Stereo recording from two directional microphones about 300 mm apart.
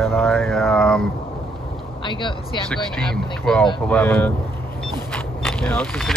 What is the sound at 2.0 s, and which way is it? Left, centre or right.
Speech, centre.